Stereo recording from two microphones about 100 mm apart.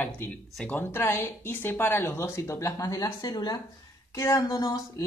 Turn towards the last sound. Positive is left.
turn(degrees=40)  # may be behind; listen again after turning